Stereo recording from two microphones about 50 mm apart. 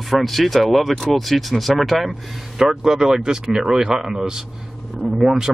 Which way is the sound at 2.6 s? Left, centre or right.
Centre.